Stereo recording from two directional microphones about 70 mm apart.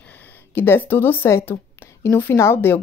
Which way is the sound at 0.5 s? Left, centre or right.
Left.